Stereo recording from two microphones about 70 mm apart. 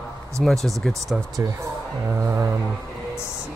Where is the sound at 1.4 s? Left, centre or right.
Right.